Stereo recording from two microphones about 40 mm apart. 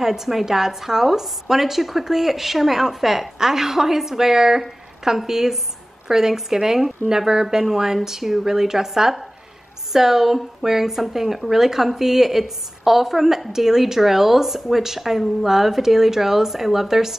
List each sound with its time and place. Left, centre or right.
0.0 s speech: centre